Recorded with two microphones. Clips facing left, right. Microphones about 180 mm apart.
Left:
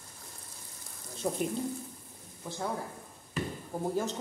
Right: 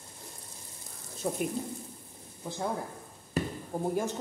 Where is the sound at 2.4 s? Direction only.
15° right (ahead or behind).